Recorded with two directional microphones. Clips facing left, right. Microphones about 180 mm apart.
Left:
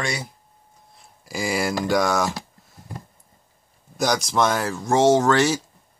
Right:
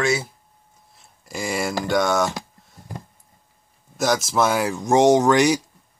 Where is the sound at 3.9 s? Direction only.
Centre (ahead or behind).